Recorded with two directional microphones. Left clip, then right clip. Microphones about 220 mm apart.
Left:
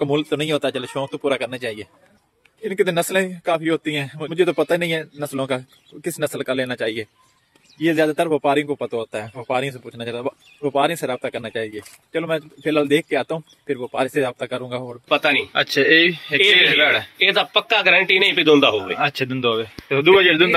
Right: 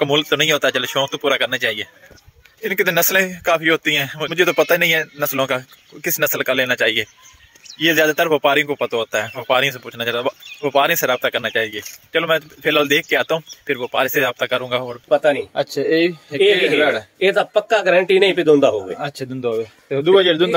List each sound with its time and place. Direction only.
0.0 s speech: centre (ahead or behind)
15.0 s speech: 40° right (ahead or behind)
15.5 s speech: 5° right (ahead or behind)
17.2 s speech: 35° right (ahead or behind)
19.1 s speech: centre (ahead or behind)
20.1 s speech: 15° right (ahead or behind)